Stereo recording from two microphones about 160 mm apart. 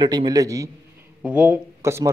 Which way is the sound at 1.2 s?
5° right (ahead or behind).